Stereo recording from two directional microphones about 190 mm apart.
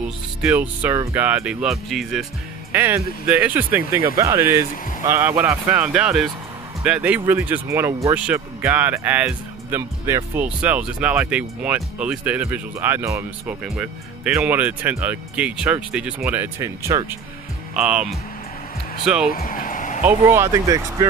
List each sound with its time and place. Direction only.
0.4 s speech: 10° right (ahead or behind)
4.0 s speech: 20° right (ahead or behind)
17.7 s speech: 5° right (ahead or behind)
19.3 s a sound: 50° left (ahead or behind)
20.1 s speech: 15° right (ahead or behind)